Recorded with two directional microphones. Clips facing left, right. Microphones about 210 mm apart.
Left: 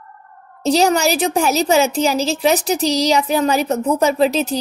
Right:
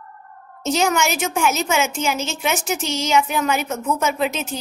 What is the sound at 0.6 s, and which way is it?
A woman's voice, 35° left (ahead or behind).